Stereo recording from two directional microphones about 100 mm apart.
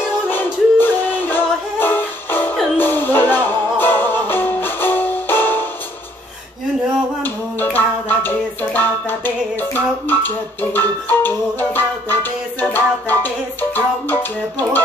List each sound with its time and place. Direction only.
0.3 s music: 20° left (ahead or behind)
7.2 s music: 20° left (ahead or behind)